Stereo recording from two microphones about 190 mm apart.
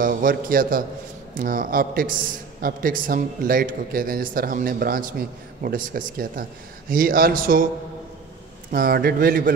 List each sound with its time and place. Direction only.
0.0 s a man's voice: 45° right (ahead or behind)
8.7 s a man's voice: 50° right (ahead or behind)